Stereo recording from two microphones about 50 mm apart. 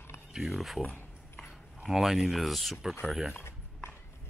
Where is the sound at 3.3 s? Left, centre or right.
Left.